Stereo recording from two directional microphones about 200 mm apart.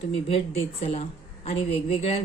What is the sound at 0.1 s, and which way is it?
A woman's voice, 30° left (ahead or behind).